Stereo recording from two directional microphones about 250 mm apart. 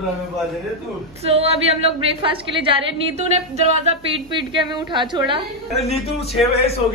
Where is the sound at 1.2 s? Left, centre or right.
Right.